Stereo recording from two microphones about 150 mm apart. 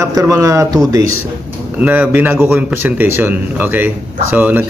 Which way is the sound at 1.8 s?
10° right (ahead or behind).